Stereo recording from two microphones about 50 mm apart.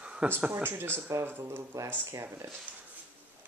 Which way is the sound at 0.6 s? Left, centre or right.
Right.